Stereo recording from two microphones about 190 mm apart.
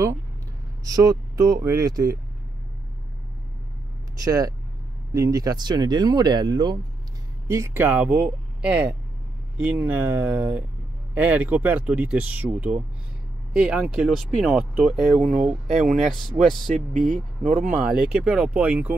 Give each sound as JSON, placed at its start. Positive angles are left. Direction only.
{"t": 0.8, "sound": "speech", "side_deg": -20}
{"t": 4.2, "sound": "speech", "side_deg": -20}
{"t": 16.7, "sound": "speech", "side_deg": -40}
{"t": 17.9, "sound": "speech", "side_deg": -5}